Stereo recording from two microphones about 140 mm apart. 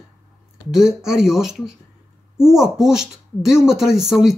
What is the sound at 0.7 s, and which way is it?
Speech, 5° right (ahead or behind).